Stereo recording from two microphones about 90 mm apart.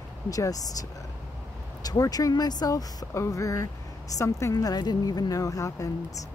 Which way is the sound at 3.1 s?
35° left (ahead or behind).